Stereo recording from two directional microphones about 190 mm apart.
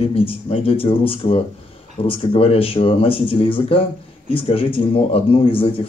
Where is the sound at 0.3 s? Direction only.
30° left (ahead or behind).